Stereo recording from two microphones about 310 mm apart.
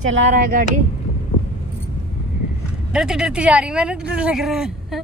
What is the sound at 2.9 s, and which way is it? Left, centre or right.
Speech, centre.